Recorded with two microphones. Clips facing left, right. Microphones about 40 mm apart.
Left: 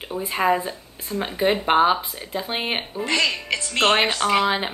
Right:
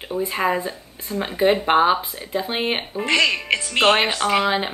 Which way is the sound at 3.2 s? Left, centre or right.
Right.